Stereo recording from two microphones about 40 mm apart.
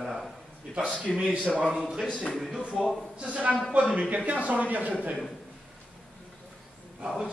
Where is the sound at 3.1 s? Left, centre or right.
Right.